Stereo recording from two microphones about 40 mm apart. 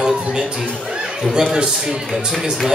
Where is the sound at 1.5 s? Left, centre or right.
Right.